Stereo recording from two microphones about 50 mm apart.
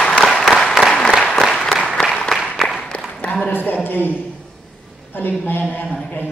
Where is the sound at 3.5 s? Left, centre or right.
Left.